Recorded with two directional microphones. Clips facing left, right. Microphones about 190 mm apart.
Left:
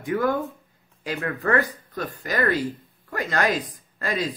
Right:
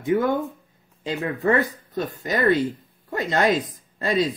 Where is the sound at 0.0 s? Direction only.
20° right (ahead or behind).